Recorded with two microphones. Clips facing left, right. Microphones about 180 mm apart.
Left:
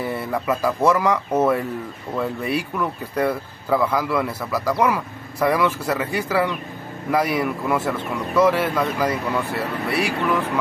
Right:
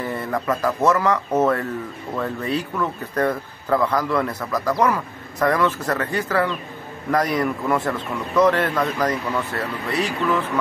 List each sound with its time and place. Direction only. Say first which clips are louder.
0.0 s speech: even; 10° left (ahead or behind)